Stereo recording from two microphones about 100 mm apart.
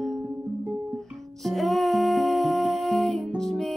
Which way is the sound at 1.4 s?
Centre (ahead or behind).